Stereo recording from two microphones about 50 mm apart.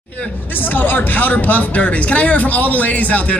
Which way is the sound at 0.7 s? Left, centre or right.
Left.